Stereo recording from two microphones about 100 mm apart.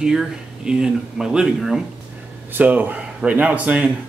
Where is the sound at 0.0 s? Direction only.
5° right (ahead or behind).